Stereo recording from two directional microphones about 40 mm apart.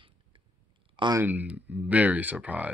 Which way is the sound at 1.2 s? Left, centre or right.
Right.